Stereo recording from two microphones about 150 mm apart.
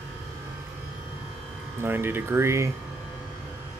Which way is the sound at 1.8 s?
15° right (ahead or behind).